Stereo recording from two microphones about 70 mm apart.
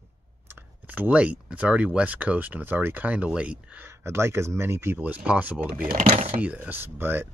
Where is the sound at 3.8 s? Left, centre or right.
Right.